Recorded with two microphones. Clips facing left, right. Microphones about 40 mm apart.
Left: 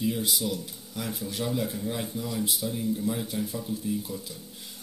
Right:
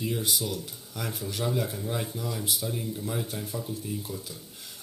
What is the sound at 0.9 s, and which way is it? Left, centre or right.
Speech, right.